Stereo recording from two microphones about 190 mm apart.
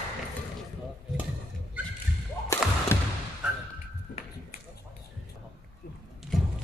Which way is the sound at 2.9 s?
15° left (ahead or behind).